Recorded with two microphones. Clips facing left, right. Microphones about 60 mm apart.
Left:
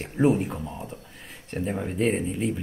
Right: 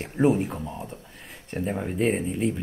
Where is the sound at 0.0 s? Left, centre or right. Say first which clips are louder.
Even; centre.